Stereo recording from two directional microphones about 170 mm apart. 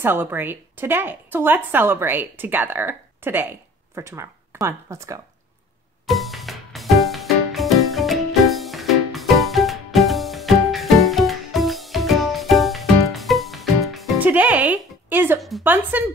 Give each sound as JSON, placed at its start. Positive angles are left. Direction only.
{"t": 0.0, "sound": "a woman's voice", "side_deg": -10}
{"t": 6.0, "sound": "music", "side_deg": 0}
{"t": 15.6, "sound": "a woman's voice", "side_deg": -10}